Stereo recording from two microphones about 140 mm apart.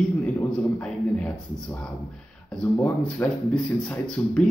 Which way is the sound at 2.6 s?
10° left (ahead or behind).